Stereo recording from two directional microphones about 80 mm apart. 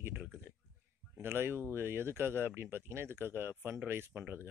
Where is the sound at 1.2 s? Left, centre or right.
Right.